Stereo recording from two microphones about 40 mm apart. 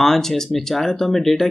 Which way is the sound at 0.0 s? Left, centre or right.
Centre.